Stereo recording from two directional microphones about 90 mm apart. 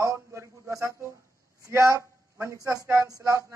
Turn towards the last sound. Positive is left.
turn(degrees=-35)  # may be behind; listen again after turning